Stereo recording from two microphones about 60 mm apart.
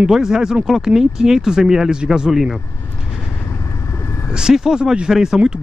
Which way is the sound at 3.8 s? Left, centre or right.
Left.